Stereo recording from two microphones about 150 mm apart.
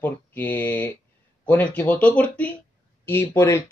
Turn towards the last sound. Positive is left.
turn(degrees=15)  # may be behind; listen again after turning